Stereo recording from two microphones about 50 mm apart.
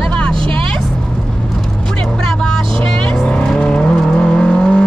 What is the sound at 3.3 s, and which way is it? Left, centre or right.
Vehicle, centre.